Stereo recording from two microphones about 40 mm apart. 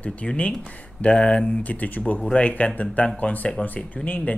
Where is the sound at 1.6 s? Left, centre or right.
Left.